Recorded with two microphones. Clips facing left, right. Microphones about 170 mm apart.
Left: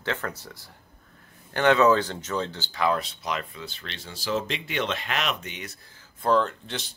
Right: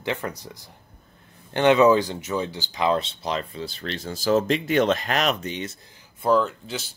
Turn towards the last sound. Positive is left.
turn(degrees=-5)  # may be behind; listen again after turning